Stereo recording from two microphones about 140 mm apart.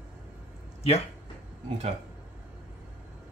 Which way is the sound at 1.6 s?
50° right (ahead or behind).